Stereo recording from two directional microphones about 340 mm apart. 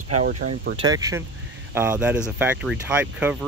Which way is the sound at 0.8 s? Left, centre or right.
Centre.